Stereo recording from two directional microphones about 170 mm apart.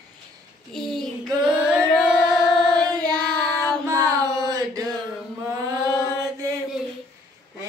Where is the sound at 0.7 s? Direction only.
Centre (ahead or behind).